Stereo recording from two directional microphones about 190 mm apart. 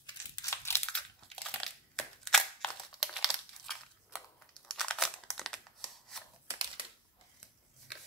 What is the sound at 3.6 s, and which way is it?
Scissors, centre (ahead or behind).